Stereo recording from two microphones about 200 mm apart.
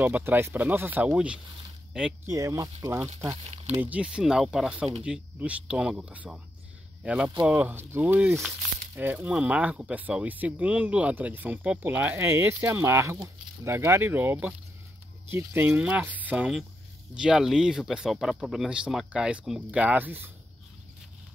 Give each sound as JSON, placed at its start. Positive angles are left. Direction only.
{"t": 0.0, "sound": "speech", "side_deg": -10}
{"t": 2.2, "sound": "speech", "side_deg": -15}